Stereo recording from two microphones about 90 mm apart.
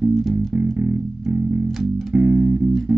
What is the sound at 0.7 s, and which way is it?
Music, 20° right (ahead or behind).